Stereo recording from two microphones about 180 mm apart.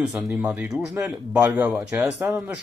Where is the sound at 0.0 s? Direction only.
5° right (ahead or behind).